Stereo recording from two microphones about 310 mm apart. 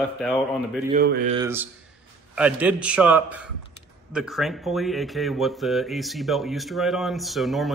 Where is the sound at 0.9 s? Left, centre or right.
Right.